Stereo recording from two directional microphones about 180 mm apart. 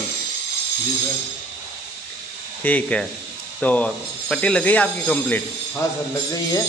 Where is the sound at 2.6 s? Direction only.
5° left (ahead or behind).